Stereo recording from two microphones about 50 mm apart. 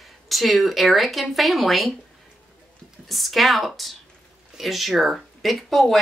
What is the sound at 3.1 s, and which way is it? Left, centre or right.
Speech, centre.